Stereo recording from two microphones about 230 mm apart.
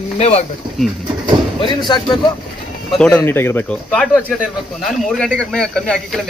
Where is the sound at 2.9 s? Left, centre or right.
Centre.